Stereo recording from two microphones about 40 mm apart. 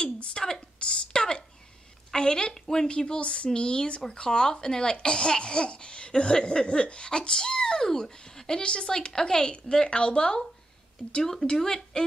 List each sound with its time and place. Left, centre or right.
0.0 s a sound: left
2.0 s a woman's voice: centre
11.2 s speech: centre